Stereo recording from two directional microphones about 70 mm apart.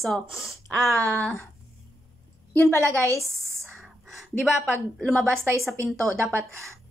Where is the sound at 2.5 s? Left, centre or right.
Left.